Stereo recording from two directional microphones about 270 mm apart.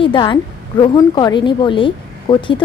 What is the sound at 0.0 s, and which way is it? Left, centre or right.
A woman's voice, centre.